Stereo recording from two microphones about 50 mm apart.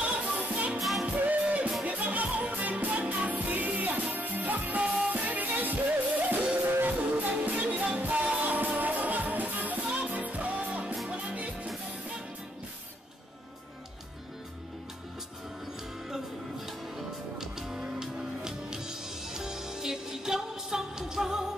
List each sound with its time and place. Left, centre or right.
0.0 s music: right
0.7 s music: centre
1.0 s music: right
4.8 s music: centre
5.1 s music: right
6.6 s music: right
16.1 s music: centre